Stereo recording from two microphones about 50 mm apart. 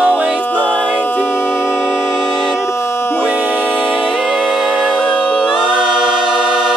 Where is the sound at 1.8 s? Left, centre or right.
Centre.